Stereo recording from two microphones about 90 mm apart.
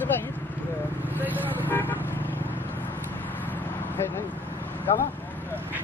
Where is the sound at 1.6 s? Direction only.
20° left (ahead or behind).